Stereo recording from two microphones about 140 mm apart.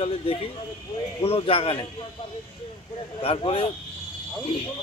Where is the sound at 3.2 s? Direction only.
40° left (ahead or behind).